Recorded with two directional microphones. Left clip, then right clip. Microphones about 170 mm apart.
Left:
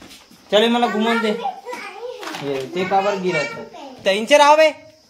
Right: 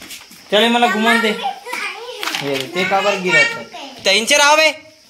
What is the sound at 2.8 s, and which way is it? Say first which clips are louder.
Speech: right 2 dB; 30° right (ahead or behind).